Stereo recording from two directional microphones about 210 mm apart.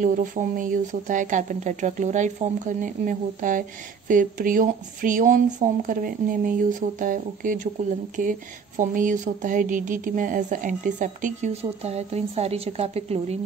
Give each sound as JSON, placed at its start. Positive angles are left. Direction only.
{"t": 0.0, "sound": "speech", "side_deg": -40}